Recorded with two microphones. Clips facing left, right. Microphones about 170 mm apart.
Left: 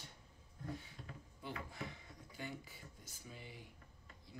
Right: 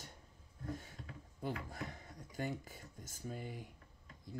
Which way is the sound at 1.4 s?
45° right (ahead or behind).